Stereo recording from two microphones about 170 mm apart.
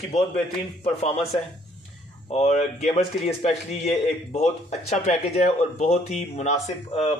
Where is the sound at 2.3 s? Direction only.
40° left (ahead or behind).